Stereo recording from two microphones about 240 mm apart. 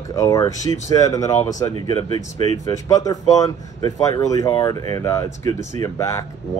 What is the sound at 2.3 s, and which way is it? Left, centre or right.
Speech, right.